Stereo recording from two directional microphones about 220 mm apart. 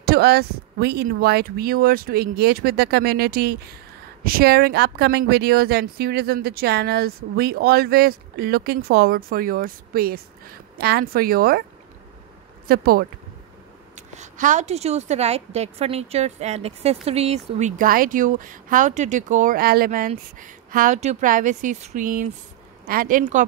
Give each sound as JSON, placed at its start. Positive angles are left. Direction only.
{"t": 0.0, "sound": "speech", "side_deg": -45}
{"t": 12.6, "sound": "speech", "side_deg": -45}
{"t": 13.9, "sound": "a woman's voice", "side_deg": -30}